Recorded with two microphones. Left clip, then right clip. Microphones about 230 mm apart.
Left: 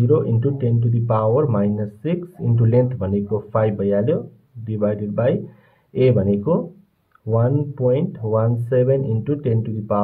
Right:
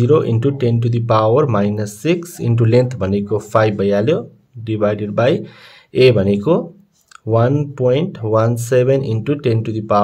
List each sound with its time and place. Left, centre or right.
0.0 s speech: right